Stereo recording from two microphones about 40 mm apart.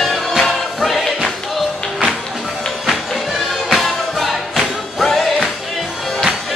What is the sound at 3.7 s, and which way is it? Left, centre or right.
Music, centre.